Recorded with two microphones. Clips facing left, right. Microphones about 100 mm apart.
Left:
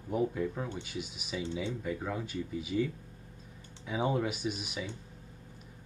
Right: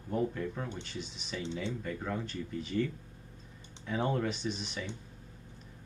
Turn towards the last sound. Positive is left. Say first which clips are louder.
# left 1 dB
turn(degrees=10)  # may be behind; listen again after turning